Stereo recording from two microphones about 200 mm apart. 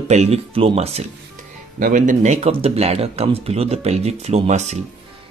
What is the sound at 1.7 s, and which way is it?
Speech, 40° right (ahead or behind).